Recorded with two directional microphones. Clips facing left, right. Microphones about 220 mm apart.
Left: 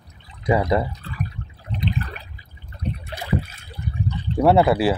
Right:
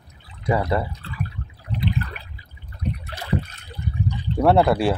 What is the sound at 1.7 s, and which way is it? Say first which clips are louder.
Water: right 1 dB; 20° left (ahead or behind).